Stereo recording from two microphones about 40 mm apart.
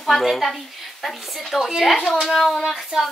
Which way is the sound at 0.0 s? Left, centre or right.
Centre.